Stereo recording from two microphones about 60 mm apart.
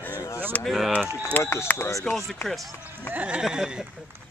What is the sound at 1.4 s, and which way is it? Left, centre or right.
Speech, left.